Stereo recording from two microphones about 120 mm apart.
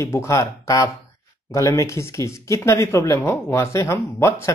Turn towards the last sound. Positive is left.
turn(degrees=25)  # may be behind; listen again after turning